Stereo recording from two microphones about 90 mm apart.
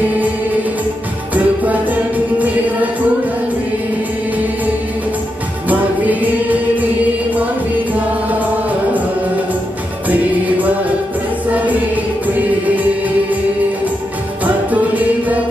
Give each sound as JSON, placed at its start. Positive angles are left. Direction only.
{"t": 1.3, "sound": "music", "side_deg": -20}
{"t": 5.7, "sound": "music", "side_deg": -15}
{"t": 7.9, "sound": "music", "side_deg": -15}
{"t": 10.0, "sound": "music", "side_deg": -20}
{"t": 14.4, "sound": "music", "side_deg": -20}